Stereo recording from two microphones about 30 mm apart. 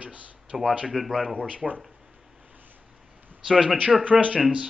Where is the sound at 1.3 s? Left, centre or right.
Left.